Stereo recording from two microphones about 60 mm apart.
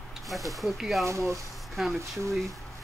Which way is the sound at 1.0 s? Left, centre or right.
Right.